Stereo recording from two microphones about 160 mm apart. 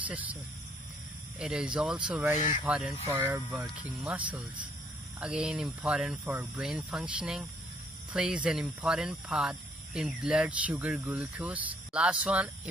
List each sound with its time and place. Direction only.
0.0 s speech: 10° right (ahead or behind)
1.4 s speech: 5° right (ahead or behind)
3.3 s speech: centre (ahead or behind)